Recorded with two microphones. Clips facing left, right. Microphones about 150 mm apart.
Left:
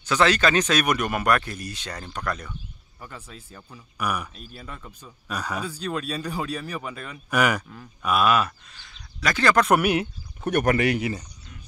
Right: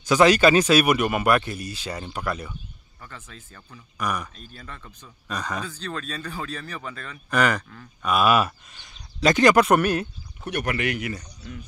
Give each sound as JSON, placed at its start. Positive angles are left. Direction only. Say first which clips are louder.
{"t": 0.0, "sound": "speech", "louder": "right 4 dB", "side_deg": -10}
{"t": 3.0, "sound": "speech", "louder": "left 2 dB", "side_deg": 10}
{"t": 8.1, "sound": "speech", "louder": "right 1 dB", "side_deg": -5}
{"t": 8.7, "sound": "speech", "louder": "right 3 dB", "side_deg": -20}
{"t": 9.7, "sound": "speech", "louder": "even", "side_deg": 10}
{"t": 10.4, "sound": "speech", "louder": "left 5 dB", "side_deg": 45}